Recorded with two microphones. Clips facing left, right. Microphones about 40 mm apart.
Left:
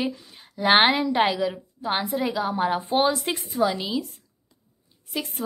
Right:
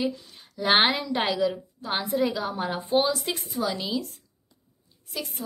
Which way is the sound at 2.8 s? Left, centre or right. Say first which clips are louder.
Left 2 dB; left.